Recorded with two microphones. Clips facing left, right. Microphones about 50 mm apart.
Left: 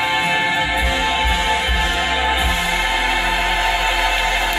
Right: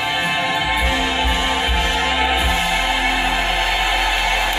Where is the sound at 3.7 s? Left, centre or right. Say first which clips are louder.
Left 1 dB; centre.